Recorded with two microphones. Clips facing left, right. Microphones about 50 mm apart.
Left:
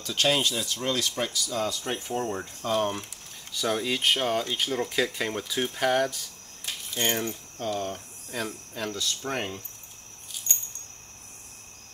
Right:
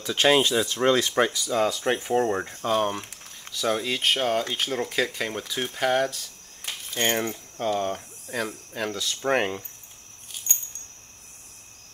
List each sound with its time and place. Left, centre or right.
0.0 s speech: right
1.2 s speech: right
2.7 s speech: centre
3.5 s speech: centre
5.1 s speech: centre
6.6 s a sound: right
8.7 s speech: centre
9.3 s speech: right